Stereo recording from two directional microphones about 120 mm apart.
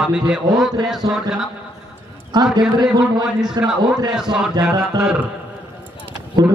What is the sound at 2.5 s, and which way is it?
A man's voice, 35° right (ahead or behind).